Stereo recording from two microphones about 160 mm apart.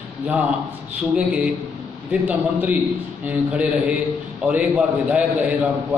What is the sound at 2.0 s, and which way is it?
Speech, 10° right (ahead or behind).